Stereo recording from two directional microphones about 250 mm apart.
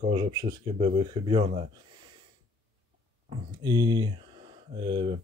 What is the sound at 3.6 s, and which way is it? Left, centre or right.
Speech, centre.